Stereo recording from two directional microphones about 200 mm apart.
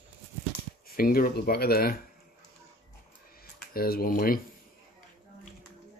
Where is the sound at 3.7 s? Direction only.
50° left (ahead or behind).